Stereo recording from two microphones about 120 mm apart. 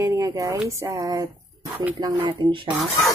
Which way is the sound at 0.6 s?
25° right (ahead or behind).